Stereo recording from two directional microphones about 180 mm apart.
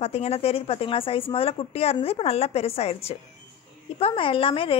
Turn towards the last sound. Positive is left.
turn(degrees=30)  # may be behind; listen again after turning